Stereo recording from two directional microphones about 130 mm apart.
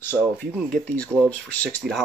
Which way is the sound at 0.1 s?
5° left (ahead or behind).